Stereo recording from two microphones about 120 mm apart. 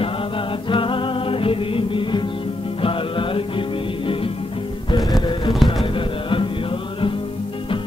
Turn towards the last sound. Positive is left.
turn(degrees=45)  # may be behind; listen again after turning